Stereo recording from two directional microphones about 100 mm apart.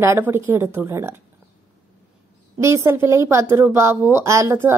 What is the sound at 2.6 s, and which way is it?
A woman's voice, 30° right (ahead or behind).